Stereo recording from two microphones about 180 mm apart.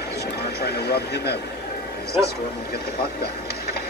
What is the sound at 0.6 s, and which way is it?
Speech, 65° left (ahead or behind).